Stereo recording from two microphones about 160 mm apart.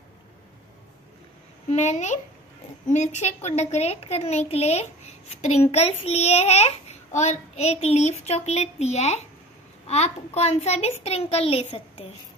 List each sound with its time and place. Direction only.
1.7 s a woman's voice: 45° left (ahead or behind)